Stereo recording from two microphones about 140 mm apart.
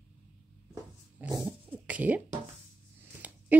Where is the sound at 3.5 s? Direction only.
10° right (ahead or behind).